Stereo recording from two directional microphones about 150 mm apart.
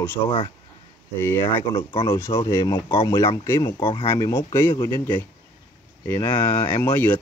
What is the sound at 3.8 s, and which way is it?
Speech, 35° left (ahead or behind).